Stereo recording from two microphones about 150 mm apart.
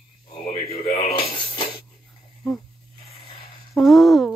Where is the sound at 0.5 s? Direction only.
40° left (ahead or behind).